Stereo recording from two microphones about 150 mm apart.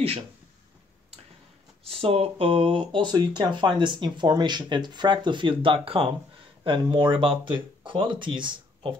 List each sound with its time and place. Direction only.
1.9 s speech: 40° right (ahead or behind)